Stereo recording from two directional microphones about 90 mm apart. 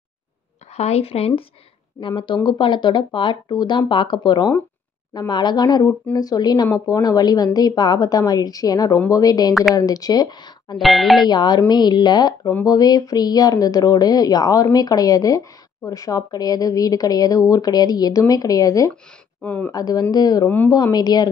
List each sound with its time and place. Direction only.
1.0 s speech: 90° left
2.0 s speech: 65° left (ahead or behind); by 9.5 s 45° left (ahead or behind)
9.5 s speech: centre (ahead or behind)
9.8 s speech: 45° left (ahead or behind)
10.8 s speech: centre (ahead or behind)
11.2 s speech: 55° left (ahead or behind)
19.4 s speech: 15° left (ahead or behind)
19.7 s speech: 45° left (ahead or behind)
20.4 s speech: 20° left (ahead or behind)
20.7 s speech: 50° left (ahead or behind)